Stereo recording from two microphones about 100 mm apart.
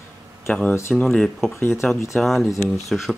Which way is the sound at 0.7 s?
25° left (ahead or behind).